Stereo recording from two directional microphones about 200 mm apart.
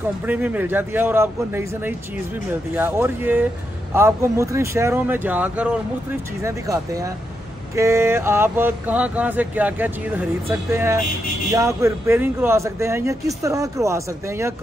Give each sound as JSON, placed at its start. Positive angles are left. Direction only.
{"t": 0.3, "sound": "speech", "side_deg": -10}